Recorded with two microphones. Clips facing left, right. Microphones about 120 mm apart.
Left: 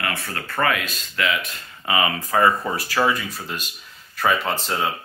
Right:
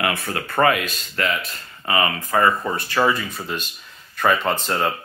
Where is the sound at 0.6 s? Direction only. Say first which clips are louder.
Right 4 dB; 5° right (ahead or behind).